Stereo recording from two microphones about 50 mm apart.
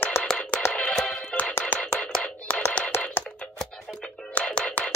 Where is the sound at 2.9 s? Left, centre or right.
Left.